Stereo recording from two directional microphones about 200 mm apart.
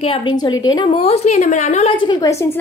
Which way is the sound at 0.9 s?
30° left (ahead or behind).